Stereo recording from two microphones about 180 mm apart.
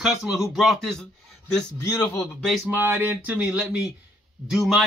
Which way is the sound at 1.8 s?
20° left (ahead or behind).